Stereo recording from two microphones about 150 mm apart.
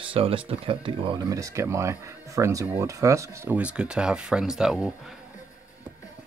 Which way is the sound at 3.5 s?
10° right (ahead or behind).